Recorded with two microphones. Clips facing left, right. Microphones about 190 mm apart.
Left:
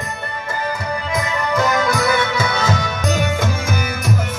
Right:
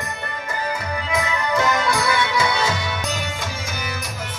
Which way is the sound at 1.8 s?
45° left (ahead or behind).